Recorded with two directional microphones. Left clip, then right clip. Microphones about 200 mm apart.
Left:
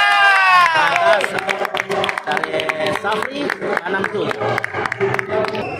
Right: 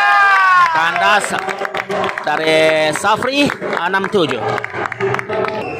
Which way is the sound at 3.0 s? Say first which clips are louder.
Right 6 dB; 35° right (ahead or behind).